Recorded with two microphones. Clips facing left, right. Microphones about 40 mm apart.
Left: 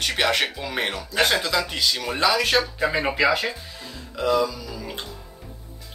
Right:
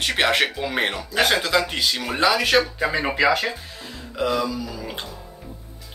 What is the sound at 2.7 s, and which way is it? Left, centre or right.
Speech, centre.